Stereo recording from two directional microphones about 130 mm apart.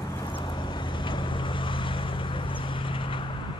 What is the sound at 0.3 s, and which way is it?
Vehicle, 40° left (ahead or behind).